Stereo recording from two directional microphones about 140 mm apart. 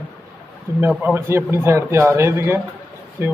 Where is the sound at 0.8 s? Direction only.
10° right (ahead or behind).